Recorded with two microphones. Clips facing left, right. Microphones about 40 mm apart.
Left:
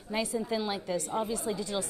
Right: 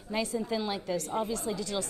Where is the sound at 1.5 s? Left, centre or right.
Centre.